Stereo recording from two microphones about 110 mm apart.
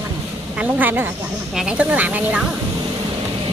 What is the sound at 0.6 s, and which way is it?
Speech, 15° right (ahead or behind).